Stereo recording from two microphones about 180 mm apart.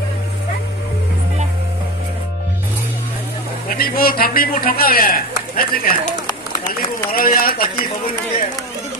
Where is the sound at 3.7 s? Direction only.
55° left (ahead or behind).